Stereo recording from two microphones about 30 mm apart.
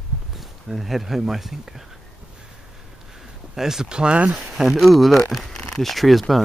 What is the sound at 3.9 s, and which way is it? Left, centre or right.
Speech, right.